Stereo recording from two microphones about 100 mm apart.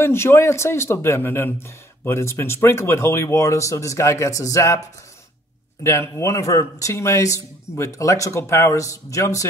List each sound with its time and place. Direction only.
0.0 s speech: 25° left (ahead or behind)
5.9 s a man's voice: 30° left (ahead or behind)